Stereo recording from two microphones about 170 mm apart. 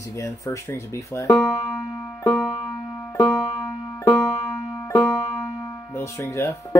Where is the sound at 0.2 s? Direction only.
15° left (ahead or behind).